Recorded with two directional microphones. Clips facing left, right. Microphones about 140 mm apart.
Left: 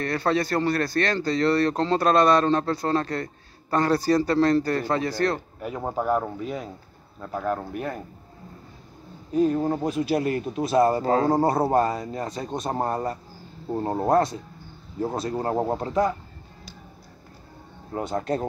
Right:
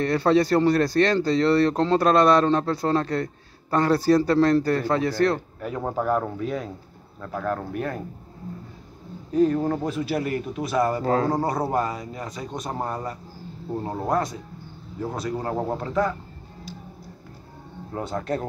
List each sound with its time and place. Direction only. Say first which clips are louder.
0.4 s a man's voice: right 5 dB; 10° right (ahead or behind)
1.2 s speech: right 2 dB; 10° left (ahead or behind)
1.8 s a man's voice: right 2 dB; 5° right (ahead or behind)
2.0 s speech: right 1 dB; 15° left (ahead or behind)
2.4 s a man's voice: right 1 dB; 5° right (ahead or behind)
9.3 s speech: right 1 dB; 5° left (ahead or behind); by 11.1 s 25° left (ahead or behind)
11.1 s speech: left 1 dB; 5° left (ahead or behind)
11.3 s a man's voice: left 3 dB; 30° left (ahead or behind)
17.9 s speech: left 1 dB; 20° left (ahead or behind)